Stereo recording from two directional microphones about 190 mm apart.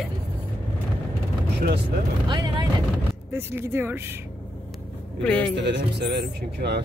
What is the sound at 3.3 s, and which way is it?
Speech, 10° right (ahead or behind).